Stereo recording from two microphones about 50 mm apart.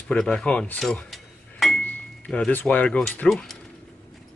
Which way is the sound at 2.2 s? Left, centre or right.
Left.